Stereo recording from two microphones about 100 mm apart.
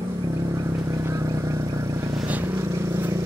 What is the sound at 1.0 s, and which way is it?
Vehicle, 25° right (ahead or behind).